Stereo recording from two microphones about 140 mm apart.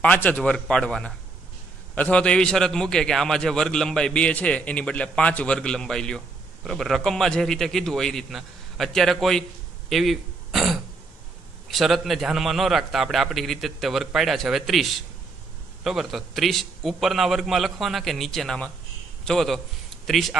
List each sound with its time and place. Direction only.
0.0 s a man's voice: 10° left (ahead or behind)